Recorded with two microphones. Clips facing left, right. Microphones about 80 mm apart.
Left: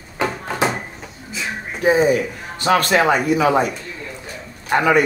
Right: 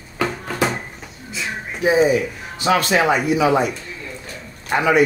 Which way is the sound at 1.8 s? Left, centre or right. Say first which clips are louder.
Even; left.